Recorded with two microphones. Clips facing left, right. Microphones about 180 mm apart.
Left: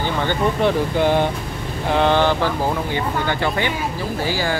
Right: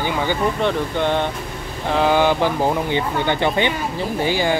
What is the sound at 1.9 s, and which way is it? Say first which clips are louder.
Speech: right 1 dB; 10° right (ahead or behind).